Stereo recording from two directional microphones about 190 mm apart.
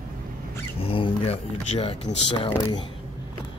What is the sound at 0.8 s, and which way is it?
Speech, 30° left (ahead or behind).